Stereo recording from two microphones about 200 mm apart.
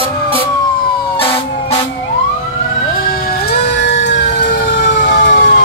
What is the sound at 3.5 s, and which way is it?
Fire engine, 55° left (ahead or behind).